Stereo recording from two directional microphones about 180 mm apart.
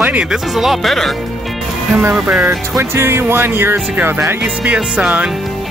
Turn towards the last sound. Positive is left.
turn(degrees=-5)  # may be behind; listen again after turning